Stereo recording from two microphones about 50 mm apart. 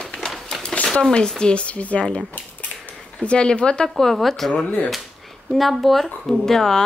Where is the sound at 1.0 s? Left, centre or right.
Centre.